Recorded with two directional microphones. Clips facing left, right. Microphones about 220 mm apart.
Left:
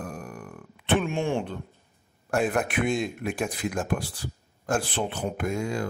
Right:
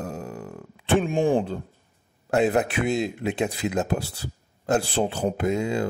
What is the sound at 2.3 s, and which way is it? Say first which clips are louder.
Speech: right 4 dB; 25° right (ahead or behind).